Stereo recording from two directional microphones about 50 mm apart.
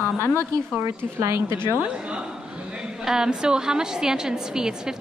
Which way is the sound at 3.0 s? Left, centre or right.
Centre.